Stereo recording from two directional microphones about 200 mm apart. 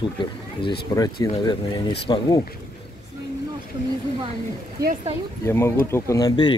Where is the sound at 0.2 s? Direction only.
25° left (ahead or behind).